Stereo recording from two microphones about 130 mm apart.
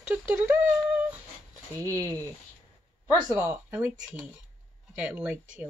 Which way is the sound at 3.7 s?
10° right (ahead or behind).